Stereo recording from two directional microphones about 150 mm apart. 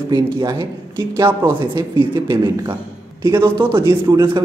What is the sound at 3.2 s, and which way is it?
Speech, 15° right (ahead or behind).